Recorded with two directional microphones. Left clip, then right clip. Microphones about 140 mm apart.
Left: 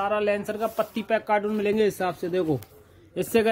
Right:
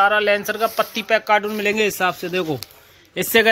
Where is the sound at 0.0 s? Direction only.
Centre (ahead or behind).